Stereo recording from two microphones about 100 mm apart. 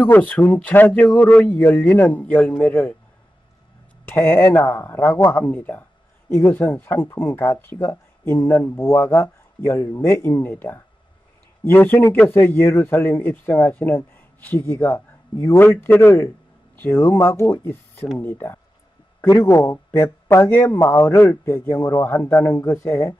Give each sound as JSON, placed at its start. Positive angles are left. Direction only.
{"t": 0.1, "sound": "speech", "side_deg": 15}
{"t": 4.1, "sound": "speech", "side_deg": 25}